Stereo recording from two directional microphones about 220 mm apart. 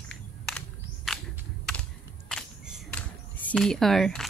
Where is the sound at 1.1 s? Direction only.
Centre (ahead or behind).